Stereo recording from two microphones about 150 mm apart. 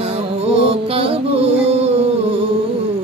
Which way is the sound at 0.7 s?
40° right (ahead or behind).